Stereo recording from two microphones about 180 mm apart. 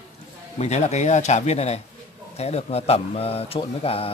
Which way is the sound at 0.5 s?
40° left (ahead or behind).